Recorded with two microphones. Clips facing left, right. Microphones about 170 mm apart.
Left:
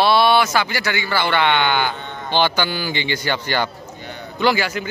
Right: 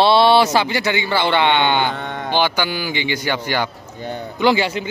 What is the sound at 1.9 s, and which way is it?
Mantra, 80° right.